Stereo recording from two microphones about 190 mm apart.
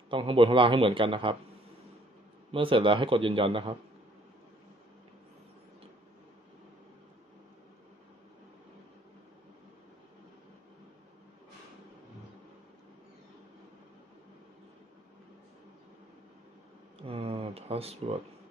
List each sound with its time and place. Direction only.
0.1 s a man's voice: 25° right (ahead or behind)
2.5 s a man's voice: 30° right (ahead or behind)
17.0 s a sound: 30° right (ahead or behind)